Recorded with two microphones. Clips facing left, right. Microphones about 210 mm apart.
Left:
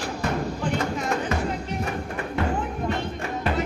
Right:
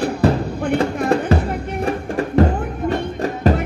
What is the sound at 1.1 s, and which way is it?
Music, 35° right (ahead or behind).